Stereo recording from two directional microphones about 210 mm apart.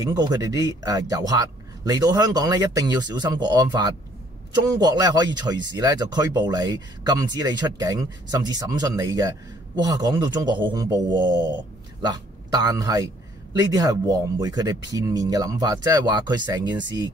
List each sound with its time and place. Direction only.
0.0 s a man's voice: 20° right (ahead or behind)